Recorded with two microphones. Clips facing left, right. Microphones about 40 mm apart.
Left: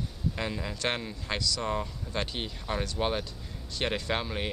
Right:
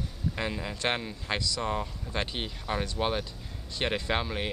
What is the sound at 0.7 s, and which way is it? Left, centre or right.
Speech, right.